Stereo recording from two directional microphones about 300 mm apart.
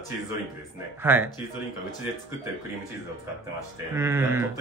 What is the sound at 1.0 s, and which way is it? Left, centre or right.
Chuckle, centre.